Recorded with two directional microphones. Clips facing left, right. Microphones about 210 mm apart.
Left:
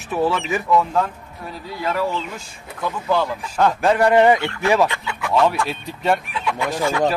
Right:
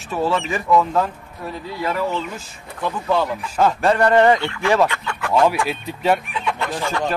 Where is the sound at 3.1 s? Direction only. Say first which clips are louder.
Even; centre (ahead or behind).